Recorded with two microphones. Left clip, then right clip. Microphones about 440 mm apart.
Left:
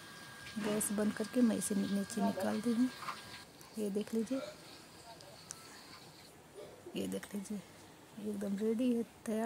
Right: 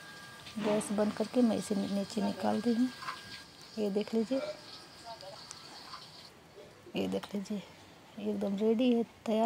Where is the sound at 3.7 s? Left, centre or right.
Left.